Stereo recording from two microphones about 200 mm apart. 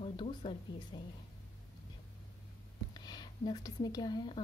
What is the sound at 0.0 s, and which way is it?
Speech, 25° left (ahead or behind).